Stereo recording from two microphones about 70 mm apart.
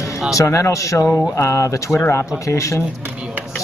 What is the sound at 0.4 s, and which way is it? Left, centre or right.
Speech, left.